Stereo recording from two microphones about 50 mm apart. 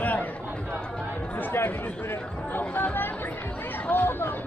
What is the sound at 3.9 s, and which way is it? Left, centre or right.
Speech, left.